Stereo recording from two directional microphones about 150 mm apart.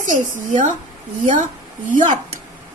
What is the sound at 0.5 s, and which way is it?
A woman's voice, 55° right (ahead or behind).